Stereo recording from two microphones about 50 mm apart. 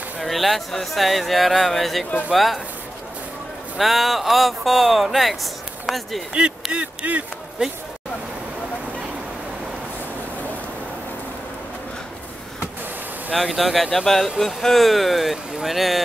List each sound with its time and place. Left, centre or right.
0.2 s speech: centre
3.7 s speech: centre
6.7 s speech: right
13.3 s speech: centre